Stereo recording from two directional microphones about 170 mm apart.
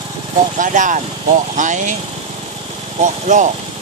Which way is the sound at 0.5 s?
50° right (ahead or behind).